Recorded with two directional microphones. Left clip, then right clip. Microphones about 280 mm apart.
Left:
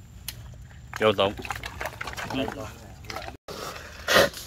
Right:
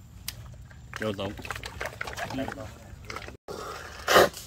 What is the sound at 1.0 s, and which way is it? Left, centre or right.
Speech, centre.